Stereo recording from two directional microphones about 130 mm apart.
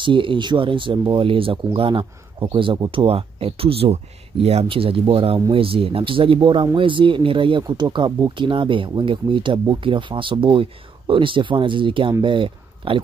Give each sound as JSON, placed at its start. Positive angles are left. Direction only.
{"t": 0.0, "sound": "speech", "side_deg": -40}